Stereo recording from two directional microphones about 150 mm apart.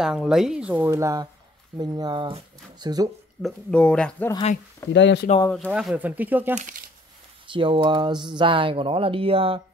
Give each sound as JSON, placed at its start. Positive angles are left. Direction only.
{"t": 0.0, "sound": "speech", "side_deg": -5}
{"t": 0.8, "sound": "speech", "side_deg": -20}
{"t": 3.4, "sound": "speech", "side_deg": 5}
{"t": 5.3, "sound": "speech", "side_deg": 50}
{"t": 5.7, "sound": "speech", "side_deg": -5}
{"t": 7.4, "sound": "speech", "side_deg": -35}